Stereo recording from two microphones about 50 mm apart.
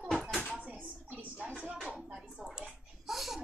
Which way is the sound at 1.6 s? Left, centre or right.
Right.